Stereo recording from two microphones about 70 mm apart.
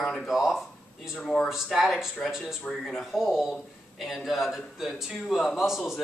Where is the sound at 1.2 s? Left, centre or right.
Centre.